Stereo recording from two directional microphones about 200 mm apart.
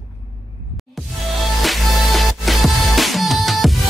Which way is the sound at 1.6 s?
Centre (ahead or behind).